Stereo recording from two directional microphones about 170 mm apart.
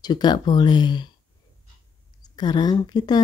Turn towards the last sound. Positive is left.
turn(degrees=25)  # may be behind; listen again after turning